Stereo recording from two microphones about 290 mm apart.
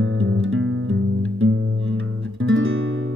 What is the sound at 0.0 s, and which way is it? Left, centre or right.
Music, right.